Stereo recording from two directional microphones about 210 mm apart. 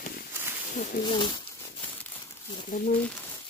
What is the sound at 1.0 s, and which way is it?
Speech, 25° left (ahead or behind).